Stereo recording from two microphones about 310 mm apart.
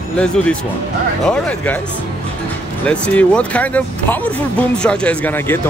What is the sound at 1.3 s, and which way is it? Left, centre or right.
Speech, centre.